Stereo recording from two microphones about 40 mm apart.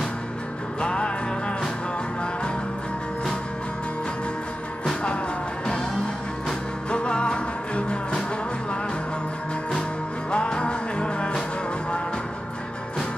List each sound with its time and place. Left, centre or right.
0.7 s music: left
6.9 s music: left
10.3 s music: left